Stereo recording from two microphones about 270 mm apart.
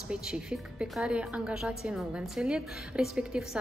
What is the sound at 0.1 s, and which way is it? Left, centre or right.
A woman's voice, centre.